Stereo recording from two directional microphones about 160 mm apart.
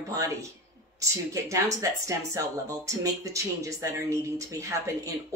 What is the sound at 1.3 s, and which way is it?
Speech, 20° right (ahead or behind).